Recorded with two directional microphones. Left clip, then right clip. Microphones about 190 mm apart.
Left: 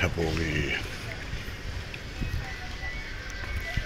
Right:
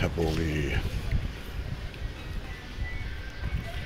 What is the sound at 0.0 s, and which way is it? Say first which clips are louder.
Speech: left 1 dB; 15° right (ahead or behind).